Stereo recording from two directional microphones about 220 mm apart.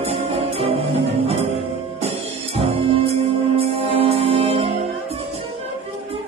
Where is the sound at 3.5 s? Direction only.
25° right (ahead or behind).